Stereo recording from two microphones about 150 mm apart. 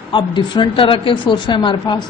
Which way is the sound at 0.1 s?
30° left (ahead or behind).